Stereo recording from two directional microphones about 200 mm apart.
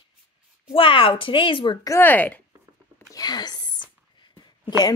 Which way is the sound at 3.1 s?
20° left (ahead or behind).